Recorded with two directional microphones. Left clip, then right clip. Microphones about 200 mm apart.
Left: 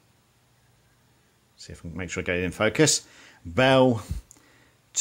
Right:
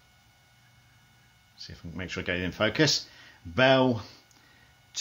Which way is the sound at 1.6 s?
30° left (ahead or behind).